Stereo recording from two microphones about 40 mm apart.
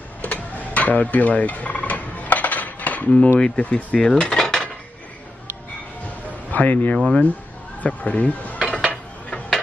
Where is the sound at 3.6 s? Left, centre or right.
Left.